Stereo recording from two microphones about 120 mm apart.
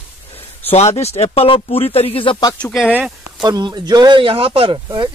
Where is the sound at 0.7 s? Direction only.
65° left (ahead or behind).